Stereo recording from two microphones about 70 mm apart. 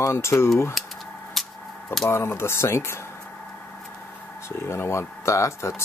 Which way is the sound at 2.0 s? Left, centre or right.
Left.